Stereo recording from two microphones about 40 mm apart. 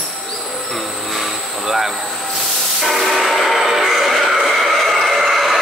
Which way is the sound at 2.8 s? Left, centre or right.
Centre.